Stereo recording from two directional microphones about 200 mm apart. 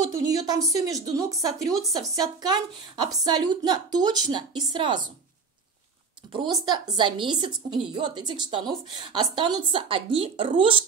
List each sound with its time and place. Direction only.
0.3 s a woman's voice: 20° right (ahead or behind)
6.3 s a woman's voice: 20° right (ahead or behind)